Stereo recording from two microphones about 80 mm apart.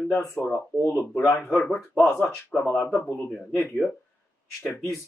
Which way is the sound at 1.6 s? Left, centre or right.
Centre.